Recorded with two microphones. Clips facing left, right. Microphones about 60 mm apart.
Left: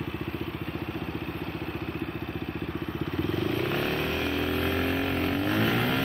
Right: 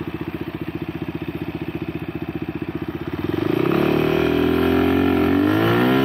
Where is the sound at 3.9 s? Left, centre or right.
Right.